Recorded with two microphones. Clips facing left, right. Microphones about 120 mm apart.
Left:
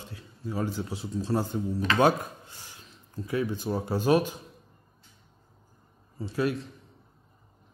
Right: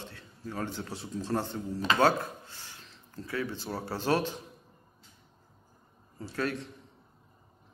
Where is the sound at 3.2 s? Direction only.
15° left (ahead or behind).